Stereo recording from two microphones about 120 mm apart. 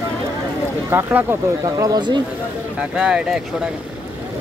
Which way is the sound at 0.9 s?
15° right (ahead or behind).